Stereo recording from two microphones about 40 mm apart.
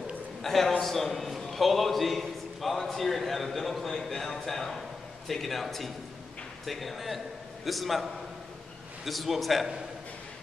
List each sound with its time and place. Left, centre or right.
0.4 s a man's voice: centre